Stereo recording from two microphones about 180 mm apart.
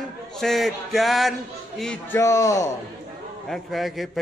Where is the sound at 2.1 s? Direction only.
15° left (ahead or behind).